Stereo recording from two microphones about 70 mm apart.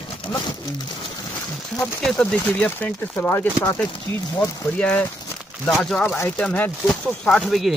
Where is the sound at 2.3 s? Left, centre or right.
Left.